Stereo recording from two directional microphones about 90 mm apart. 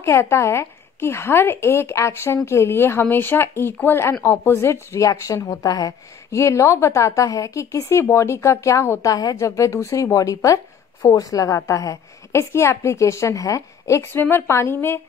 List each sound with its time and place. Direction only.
0.0 s a woman's voice: 30° left (ahead or behind)
9.1 s speech: 45° left (ahead or behind); by 15.0 s 25° left (ahead or behind)